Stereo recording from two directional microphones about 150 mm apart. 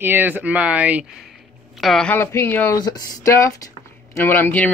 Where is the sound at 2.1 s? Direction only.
15° left (ahead or behind).